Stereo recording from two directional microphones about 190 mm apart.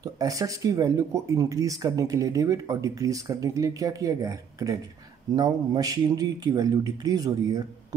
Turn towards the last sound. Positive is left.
turn(degrees=-20)  # may be behind; listen again after turning